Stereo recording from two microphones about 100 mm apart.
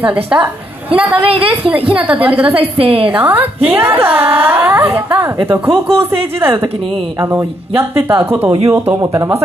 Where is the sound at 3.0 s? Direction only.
15° right (ahead or behind).